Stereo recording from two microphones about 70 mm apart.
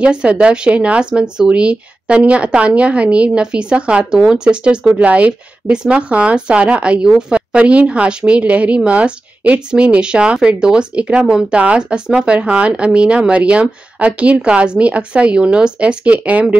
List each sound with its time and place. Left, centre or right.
0.0 s speech: centre